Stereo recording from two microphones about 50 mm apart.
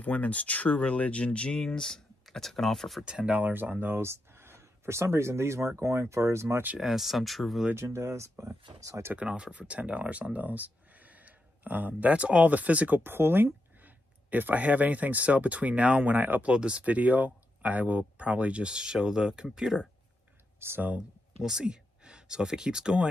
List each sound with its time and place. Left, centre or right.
0.0 s speech: left
1.6 s speech: centre
3.1 s speech: right
3.5 s speech: right
3.9 s speech: right
6.8 s speech: centre
7.7 s speech: right
9.3 s speech: right
13.0 s speech: right
13.7 s speech: right
16.4 s speech: right
20.5 s speech: right
21.4 s speech: centre